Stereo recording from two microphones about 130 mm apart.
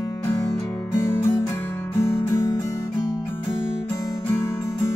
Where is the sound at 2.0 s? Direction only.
20° left (ahead or behind).